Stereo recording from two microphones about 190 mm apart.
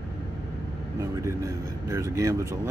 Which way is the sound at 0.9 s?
15° right (ahead or behind).